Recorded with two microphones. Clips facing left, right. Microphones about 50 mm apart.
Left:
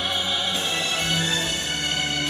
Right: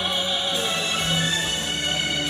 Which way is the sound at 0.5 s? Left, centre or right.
Left.